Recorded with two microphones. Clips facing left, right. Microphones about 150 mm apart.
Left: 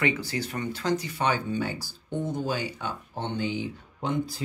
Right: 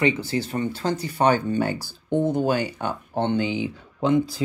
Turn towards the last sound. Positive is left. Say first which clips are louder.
# right 8 dB
turn(degrees=-90)